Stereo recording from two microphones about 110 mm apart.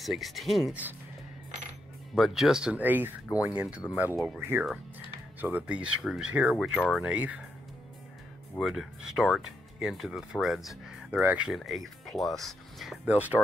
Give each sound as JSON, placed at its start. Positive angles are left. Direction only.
{"t": 0.0, "sound": "speech", "side_deg": 0}
{"t": 2.1, "sound": "speech", "side_deg": 0}
{"t": 8.5, "sound": "speech", "side_deg": -5}
{"t": 11.5, "sound": "speech", "side_deg": 0}